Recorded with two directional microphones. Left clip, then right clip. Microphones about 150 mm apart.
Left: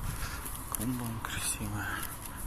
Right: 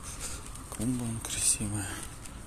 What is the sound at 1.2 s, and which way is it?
Speech, 70° right (ahead or behind).